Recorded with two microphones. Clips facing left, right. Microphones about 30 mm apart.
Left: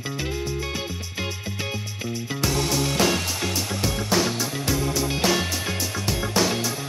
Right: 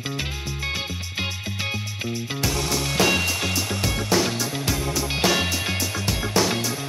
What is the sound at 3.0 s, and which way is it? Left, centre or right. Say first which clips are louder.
Music: right 6 dB; right.